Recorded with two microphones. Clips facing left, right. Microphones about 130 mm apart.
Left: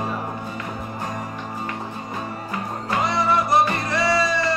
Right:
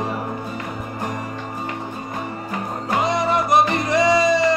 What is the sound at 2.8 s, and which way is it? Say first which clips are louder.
Music: right 2 dB; 20° right (ahead or behind).